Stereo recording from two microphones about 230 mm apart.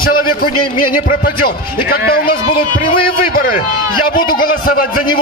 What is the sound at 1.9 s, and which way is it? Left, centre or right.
Speech, left.